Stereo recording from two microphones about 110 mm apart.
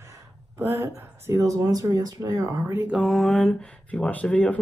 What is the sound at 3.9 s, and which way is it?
Speech, 15° left (ahead or behind).